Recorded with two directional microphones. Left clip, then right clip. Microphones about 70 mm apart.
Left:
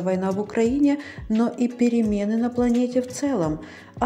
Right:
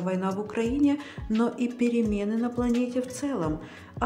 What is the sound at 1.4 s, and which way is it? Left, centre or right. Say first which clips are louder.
Speech: left 4 dB; left.